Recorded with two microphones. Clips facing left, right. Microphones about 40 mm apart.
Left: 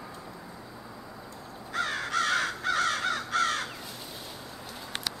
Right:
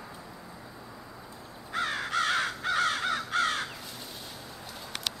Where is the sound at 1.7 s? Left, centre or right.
Centre.